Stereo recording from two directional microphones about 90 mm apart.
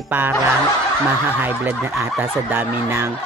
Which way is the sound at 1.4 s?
20° right (ahead or behind).